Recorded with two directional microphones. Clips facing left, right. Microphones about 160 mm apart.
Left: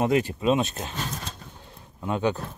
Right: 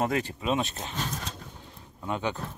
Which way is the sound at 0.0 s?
20° left (ahead or behind).